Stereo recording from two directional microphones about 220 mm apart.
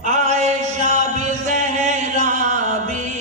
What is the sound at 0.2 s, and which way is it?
Chant, 30° right (ahead or behind).